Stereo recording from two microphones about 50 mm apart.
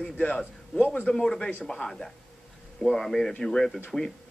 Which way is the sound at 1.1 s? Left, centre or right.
Centre.